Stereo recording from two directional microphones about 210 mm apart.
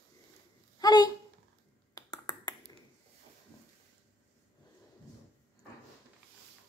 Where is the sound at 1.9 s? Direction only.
20° left (ahead or behind).